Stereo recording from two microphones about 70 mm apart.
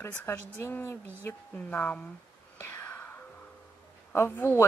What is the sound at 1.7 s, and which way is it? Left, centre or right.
Speech, left.